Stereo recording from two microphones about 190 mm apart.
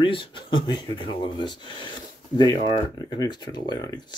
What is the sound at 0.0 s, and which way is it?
Speech, 25° left (ahead or behind).